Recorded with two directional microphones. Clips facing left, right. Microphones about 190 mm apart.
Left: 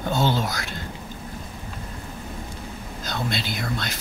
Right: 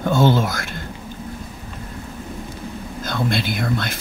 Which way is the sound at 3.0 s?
50° right (ahead or behind).